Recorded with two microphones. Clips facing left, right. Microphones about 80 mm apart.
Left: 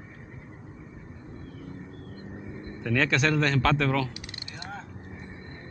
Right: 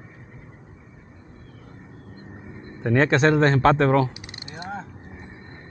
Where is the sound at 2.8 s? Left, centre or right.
Right.